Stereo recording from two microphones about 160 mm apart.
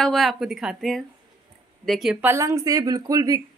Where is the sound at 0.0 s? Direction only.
Centre (ahead or behind).